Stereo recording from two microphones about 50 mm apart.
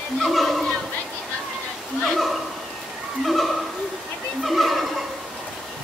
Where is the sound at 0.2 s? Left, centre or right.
Centre.